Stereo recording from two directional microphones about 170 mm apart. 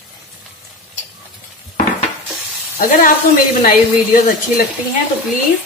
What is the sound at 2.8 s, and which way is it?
Speech, 55° left (ahead or behind).